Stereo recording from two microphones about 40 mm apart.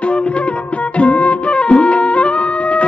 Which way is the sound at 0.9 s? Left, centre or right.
Left.